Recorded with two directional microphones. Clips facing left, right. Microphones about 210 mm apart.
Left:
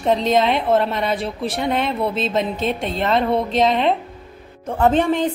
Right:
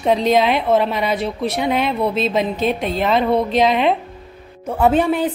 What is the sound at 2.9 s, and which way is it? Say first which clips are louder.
A woman's voice: right 1 dB; 5° right (ahead or behind).